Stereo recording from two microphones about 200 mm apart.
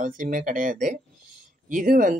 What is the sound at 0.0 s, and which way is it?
Speech, 40° right (ahead or behind).